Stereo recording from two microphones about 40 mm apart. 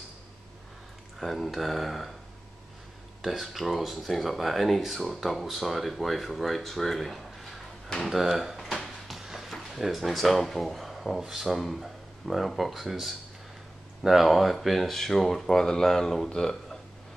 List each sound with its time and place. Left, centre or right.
1.2 s speech: centre
3.2 s speech: centre
8.1 s speech: centre
8.5 s a sound: centre
9.8 s speech: centre